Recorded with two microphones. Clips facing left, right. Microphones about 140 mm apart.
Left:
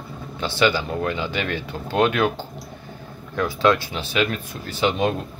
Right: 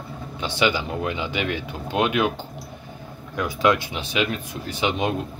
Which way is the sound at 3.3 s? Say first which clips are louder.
Left 2 dB; 15° right (ahead or behind).